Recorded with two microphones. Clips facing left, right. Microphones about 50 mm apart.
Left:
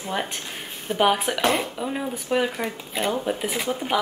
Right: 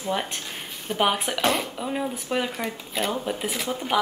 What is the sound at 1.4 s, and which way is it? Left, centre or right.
Speech, left.